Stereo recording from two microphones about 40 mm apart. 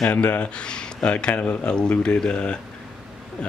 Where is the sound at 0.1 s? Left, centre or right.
Left.